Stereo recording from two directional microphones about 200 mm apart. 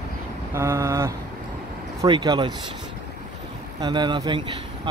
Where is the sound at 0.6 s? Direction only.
15° right (ahead or behind).